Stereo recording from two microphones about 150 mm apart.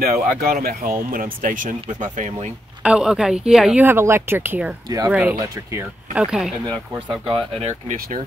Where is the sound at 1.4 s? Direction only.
60° right (ahead or behind).